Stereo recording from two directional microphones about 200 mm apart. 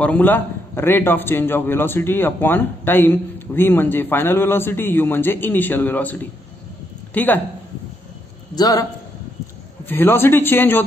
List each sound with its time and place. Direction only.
0.0 s a man's voice: 10° left (ahead or behind)
8.5 s a man's voice: 20° left (ahead or behind)
9.8 s a man's voice: 10° left (ahead or behind)